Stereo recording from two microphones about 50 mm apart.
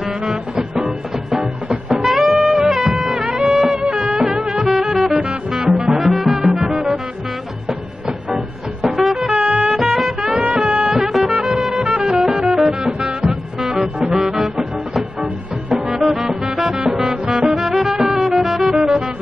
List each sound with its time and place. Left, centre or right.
0.0 s music: centre
2.0 s music: centre
3.2 s music: right
3.4 s music: centre
8.8 s music: centre
9.4 s music: centre
13.0 s music: centre